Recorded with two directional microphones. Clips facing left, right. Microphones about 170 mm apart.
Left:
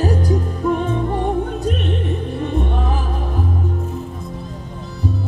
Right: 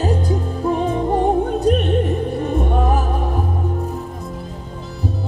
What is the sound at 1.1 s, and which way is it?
Music, 40° right (ahead or behind).